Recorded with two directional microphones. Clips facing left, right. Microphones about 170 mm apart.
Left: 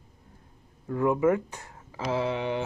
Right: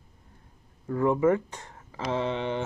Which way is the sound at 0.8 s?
10° left (ahead or behind).